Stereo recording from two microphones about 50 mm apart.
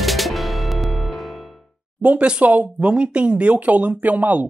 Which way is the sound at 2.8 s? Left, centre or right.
Centre.